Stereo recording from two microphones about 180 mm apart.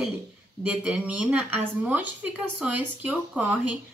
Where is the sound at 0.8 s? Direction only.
5° right (ahead or behind).